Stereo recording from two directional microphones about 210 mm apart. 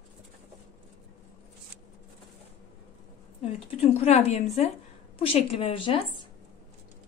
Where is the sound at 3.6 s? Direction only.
30° left (ahead or behind).